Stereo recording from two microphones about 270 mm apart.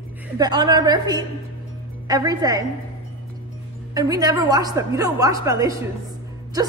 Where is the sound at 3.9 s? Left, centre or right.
Centre.